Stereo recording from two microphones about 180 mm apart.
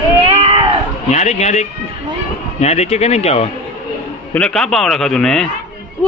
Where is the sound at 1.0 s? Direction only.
40° left (ahead or behind).